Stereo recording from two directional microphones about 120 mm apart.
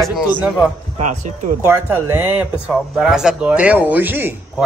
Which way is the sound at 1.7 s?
20° right (ahead or behind).